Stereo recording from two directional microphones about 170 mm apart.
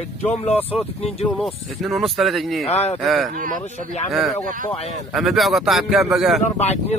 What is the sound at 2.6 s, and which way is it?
Speech, 40° left (ahead or behind).